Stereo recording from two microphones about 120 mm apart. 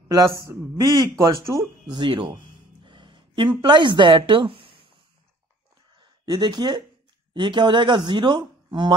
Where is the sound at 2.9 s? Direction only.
45° right (ahead or behind).